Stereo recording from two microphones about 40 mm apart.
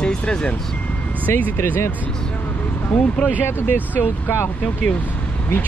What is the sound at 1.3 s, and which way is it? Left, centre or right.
Speech, left.